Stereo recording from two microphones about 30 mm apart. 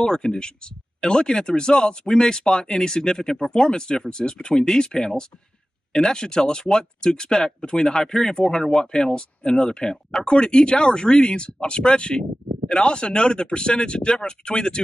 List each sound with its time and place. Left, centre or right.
0.0 s speech: left
3.6 s speech: left